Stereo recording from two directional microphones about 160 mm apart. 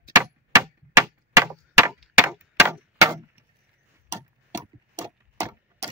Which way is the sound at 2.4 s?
15° right (ahead or behind).